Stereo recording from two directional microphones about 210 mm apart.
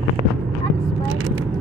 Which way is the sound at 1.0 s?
70° right (ahead or behind).